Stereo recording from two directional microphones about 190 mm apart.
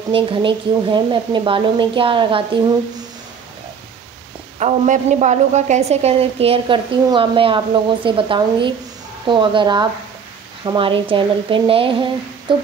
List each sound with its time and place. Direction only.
0.1 s speech: 25° right (ahead or behind)
4.6 s a woman's voice: 40° right (ahead or behind)